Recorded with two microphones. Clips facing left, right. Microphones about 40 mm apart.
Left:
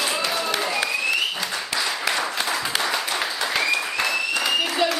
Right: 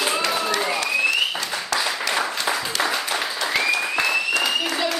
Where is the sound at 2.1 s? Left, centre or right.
Centre.